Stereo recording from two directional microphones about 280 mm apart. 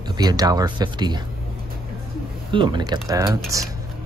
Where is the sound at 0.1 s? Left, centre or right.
Centre.